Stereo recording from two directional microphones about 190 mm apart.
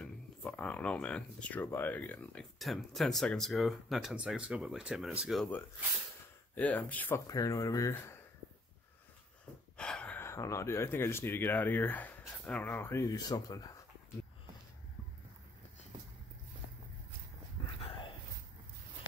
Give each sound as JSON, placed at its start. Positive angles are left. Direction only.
{"t": 0.0, "sound": "speech", "side_deg": 5}
{"t": 9.8, "sound": "speech", "side_deg": 5}
{"t": 17.7, "sound": "dog", "side_deg": 30}